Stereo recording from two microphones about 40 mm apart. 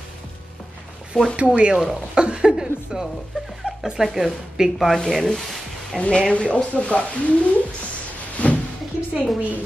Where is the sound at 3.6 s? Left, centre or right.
Right.